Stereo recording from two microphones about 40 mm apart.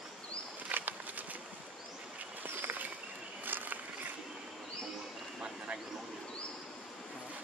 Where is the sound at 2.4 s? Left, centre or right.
Right.